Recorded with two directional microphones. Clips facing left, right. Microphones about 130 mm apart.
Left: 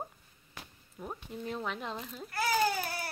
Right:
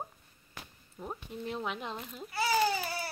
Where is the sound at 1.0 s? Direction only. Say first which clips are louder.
Right 1 dB; 5° right (ahead or behind).